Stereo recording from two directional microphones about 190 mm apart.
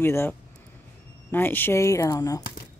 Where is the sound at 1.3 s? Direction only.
10° left (ahead or behind).